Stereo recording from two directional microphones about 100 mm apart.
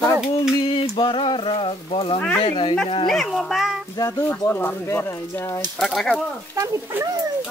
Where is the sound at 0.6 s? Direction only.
60° left (ahead or behind).